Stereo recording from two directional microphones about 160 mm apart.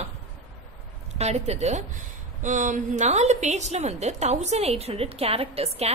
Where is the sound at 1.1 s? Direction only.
45° right (ahead or behind).